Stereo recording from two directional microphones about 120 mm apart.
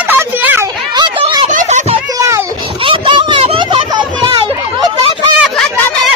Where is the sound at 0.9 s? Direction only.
40° right (ahead or behind).